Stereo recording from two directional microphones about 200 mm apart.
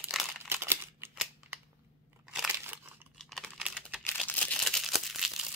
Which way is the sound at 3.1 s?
Centre (ahead or behind).